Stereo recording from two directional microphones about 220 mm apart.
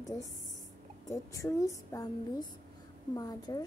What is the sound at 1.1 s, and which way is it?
Speech, 15° left (ahead or behind).